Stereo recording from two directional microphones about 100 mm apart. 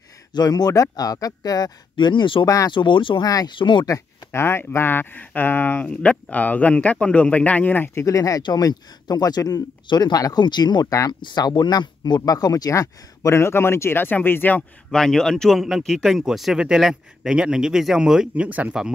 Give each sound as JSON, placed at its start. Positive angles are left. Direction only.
{"t": 0.3, "sound": "speech", "side_deg": 45}
{"t": 2.4, "sound": "speech", "side_deg": 35}
{"t": 2.7, "sound": "speech", "side_deg": 55}
{"t": 3.3, "sound": "speech", "side_deg": 35}
{"t": 3.5, "sound": "speech", "side_deg": 55}
{"t": 3.8, "sound": "speech", "side_deg": 30}
{"t": 8.0, "sound": "speech", "side_deg": 35}
{"t": 8.4, "sound": "speech", "side_deg": 50}
{"t": 14.9, "sound": "speech", "side_deg": 5}